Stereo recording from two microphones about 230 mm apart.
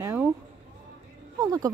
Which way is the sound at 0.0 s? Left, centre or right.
Centre.